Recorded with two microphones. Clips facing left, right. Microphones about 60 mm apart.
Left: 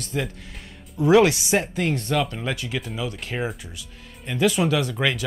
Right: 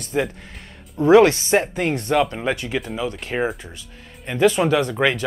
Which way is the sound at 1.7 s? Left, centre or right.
Centre.